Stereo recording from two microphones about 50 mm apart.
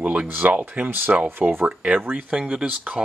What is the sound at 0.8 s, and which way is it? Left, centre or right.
Speech, right.